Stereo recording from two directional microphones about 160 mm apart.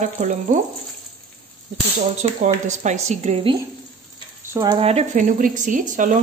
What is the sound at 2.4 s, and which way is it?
Speech, 50° right (ahead or behind).